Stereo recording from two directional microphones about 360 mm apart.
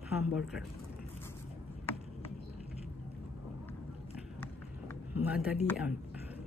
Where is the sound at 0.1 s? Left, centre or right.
Centre.